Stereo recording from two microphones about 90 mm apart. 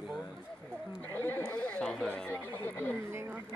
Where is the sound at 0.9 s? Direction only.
25° left (ahead or behind).